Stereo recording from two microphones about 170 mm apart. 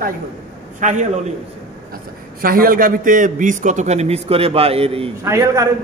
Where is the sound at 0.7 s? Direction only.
45° right (ahead or behind).